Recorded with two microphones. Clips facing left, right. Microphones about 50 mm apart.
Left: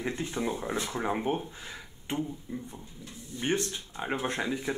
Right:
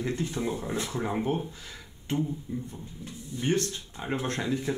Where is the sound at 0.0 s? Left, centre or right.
Left.